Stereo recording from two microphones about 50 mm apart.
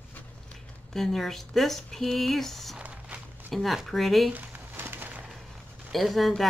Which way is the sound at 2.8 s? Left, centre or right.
Right.